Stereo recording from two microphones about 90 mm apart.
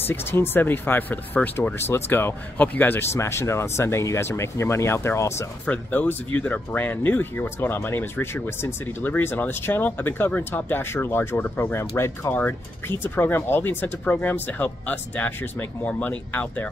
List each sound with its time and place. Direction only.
0.0 s speech: 25° left (ahead or behind)
5.7 s speech: 20° left (ahead or behind)